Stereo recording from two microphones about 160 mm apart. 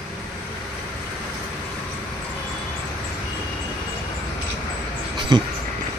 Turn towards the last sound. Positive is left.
turn(degrees=-25)  # may be behind; listen again after turning